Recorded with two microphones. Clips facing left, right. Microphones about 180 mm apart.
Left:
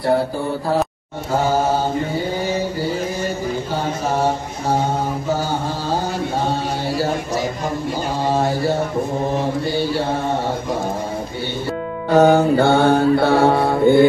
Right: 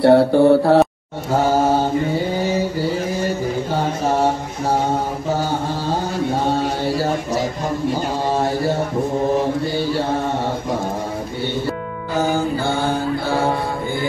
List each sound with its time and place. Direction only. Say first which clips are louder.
0.0 s speech: right 8 dB; 70° right (ahead or behind)
12.1 s mantra: left 7 dB; 65° left (ahead or behind)